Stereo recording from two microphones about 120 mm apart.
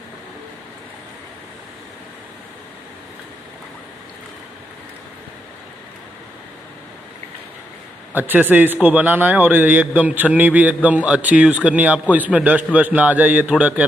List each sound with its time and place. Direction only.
8.1 s a man's voice: 15° right (ahead or behind)